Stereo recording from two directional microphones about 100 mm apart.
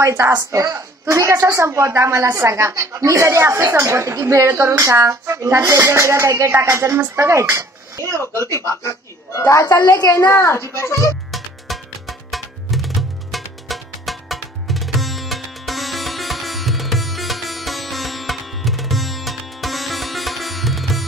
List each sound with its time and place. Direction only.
0.0 s a woman's voice: 30° right (ahead or behind)
8.1 s a child's voice: 30° left (ahead or behind)
11.3 s music: centre (ahead or behind)